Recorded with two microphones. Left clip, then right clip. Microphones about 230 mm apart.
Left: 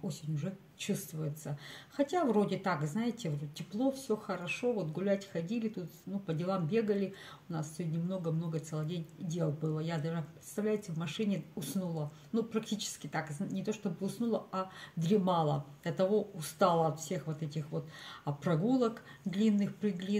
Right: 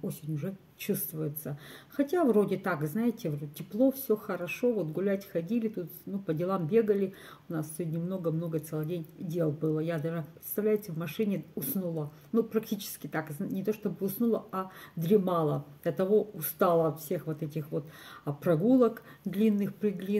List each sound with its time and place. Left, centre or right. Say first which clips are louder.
0.1 s a woman's voice: right 4 dB; centre